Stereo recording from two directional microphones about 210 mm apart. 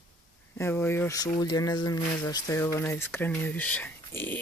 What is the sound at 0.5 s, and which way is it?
Speech, 10° left (ahead or behind).